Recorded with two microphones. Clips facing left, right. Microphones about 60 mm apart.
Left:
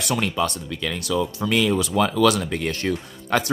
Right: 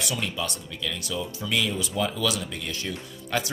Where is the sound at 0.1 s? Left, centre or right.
Left.